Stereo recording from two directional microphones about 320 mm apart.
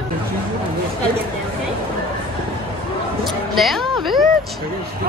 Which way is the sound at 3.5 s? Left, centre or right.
Centre.